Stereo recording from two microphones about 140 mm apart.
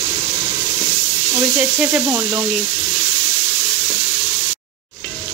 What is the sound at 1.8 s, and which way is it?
Frying, 15° right (ahead or behind).